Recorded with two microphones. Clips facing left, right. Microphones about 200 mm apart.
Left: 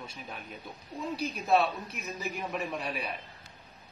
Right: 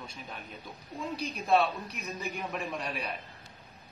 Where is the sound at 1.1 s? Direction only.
5° left (ahead or behind).